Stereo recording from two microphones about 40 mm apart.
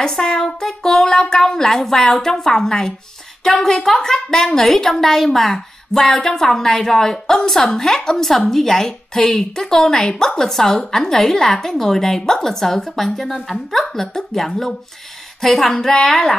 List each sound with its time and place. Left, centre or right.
0.0 s a woman's voice: centre
15.4 s a sound: centre
15.8 s a woman's voice: centre